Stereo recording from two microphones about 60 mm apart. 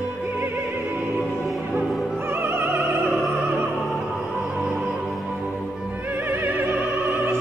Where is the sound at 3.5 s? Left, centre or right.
Right.